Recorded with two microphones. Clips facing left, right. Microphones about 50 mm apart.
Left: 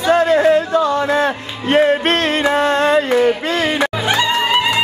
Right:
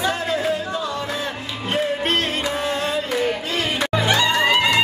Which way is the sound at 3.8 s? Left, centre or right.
Centre.